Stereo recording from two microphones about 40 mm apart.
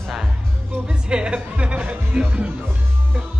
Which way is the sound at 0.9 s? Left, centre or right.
Right.